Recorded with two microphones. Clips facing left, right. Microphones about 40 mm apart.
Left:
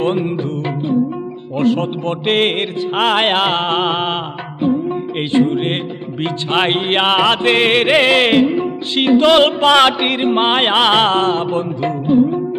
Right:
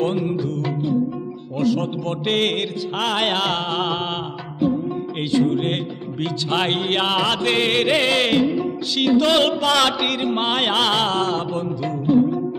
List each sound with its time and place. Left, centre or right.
0.0 s music: left